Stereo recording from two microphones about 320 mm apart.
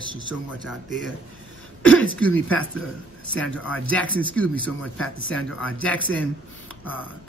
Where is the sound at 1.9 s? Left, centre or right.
Left.